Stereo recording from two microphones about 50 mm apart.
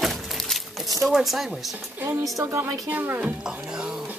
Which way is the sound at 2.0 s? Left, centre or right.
Right.